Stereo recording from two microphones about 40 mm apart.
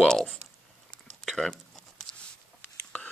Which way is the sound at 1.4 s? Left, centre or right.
Centre.